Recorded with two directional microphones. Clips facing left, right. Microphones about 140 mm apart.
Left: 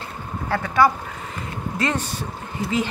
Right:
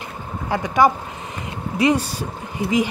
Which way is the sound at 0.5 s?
15° right (ahead or behind).